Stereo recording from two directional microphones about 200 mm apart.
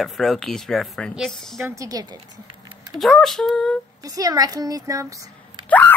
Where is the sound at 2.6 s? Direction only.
20° right (ahead or behind).